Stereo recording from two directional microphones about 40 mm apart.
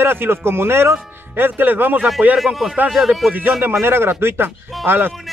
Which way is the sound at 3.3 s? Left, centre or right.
Right.